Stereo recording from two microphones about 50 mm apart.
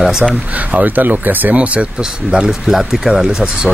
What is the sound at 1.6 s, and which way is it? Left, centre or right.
Speech, right.